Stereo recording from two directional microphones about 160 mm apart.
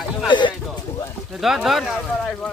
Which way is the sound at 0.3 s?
30° left (ahead or behind).